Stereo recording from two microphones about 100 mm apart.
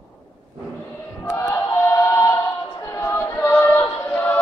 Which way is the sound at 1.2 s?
30° left (ahead or behind).